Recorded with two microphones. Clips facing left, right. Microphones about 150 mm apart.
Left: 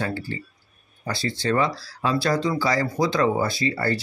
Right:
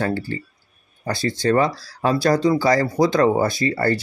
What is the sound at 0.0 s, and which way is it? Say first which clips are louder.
Speech: right 5 dB; 50° right (ahead or behind).